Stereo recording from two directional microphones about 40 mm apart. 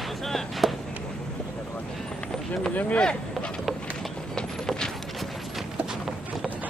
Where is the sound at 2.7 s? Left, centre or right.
Left.